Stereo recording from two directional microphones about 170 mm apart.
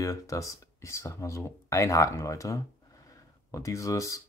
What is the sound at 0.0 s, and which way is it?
Speech, 20° left (ahead or behind).